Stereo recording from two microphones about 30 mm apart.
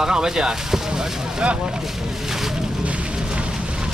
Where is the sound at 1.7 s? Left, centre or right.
Centre.